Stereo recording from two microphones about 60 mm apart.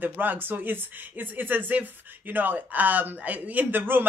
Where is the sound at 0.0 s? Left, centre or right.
Right.